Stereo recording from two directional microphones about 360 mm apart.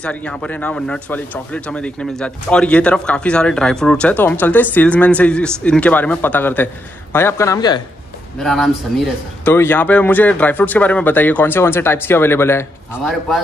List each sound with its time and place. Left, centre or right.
0.0 s speech: centre